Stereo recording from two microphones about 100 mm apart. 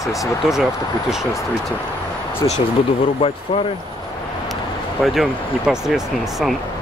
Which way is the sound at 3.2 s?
60° left (ahead or behind).